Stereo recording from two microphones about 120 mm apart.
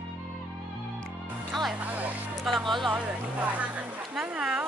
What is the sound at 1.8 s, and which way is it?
Speech, 15° right (ahead or behind).